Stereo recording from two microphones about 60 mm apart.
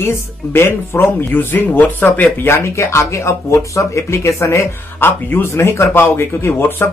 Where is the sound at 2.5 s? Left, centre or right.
Left.